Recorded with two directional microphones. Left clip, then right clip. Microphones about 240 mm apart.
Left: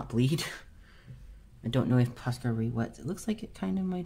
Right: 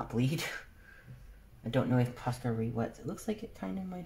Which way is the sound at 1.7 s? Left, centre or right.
Left.